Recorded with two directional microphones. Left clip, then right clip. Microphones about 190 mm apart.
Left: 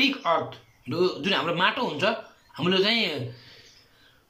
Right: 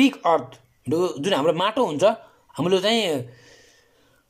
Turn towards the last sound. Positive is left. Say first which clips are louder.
# right 3 dB
turn(degrees=-30)  # may be behind; listen again after turning